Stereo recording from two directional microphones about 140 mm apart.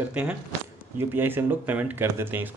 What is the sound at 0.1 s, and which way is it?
Speech, 10° right (ahead or behind).